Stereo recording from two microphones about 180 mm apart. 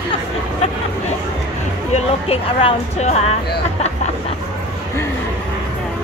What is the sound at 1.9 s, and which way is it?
Speech, 35° left (ahead or behind).